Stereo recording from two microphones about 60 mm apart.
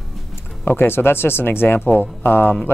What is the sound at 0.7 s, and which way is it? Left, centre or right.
Speech, left.